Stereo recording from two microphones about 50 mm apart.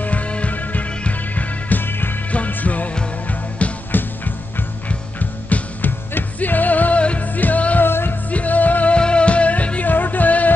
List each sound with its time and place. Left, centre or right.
0.0 s music: left
2.3 s music: left
3.9 s music: left
7.8 s music: left
8.3 s music: left
8.9 s music: left